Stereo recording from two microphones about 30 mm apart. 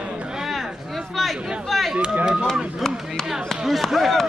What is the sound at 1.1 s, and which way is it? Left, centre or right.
Chatter, centre.